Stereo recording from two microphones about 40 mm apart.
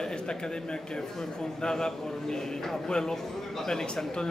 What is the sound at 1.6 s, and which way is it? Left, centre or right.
Speech, centre.